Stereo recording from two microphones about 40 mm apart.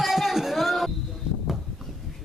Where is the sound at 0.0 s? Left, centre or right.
Centre.